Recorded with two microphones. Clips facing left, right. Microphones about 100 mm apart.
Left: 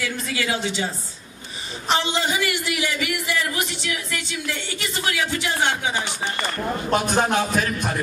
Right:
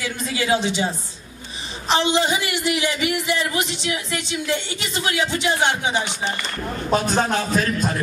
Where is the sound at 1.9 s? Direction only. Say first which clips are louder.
Right 3 dB; 20° right (ahead or behind).